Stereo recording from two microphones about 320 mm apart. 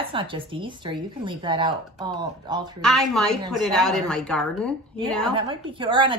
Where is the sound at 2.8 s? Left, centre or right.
Centre.